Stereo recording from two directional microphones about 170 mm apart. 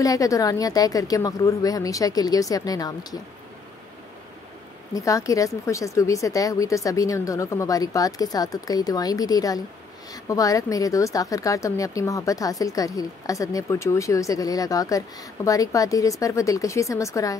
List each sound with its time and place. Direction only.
0.0 s a woman's voice: 20° left (ahead or behind)
4.9 s a woman's voice: 20° left (ahead or behind)